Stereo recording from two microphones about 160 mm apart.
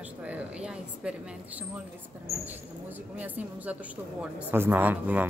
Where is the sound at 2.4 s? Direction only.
10° right (ahead or behind).